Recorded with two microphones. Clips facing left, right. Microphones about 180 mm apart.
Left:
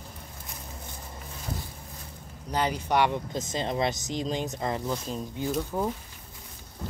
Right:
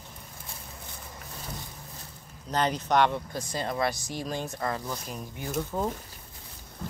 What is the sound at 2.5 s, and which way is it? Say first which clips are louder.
Speech: right 1 dB; 10° left (ahead or behind).